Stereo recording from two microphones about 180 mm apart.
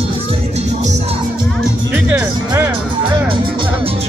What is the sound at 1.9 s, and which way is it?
Music, 10° right (ahead or behind).